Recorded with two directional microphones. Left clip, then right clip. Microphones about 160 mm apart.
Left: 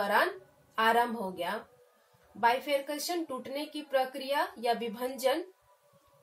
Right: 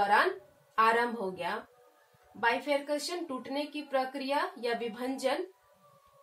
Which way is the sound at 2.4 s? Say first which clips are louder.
Left 1 dB; 40° right (ahead or behind).